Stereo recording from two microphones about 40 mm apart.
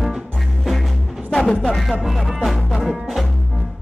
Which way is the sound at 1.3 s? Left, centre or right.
Centre.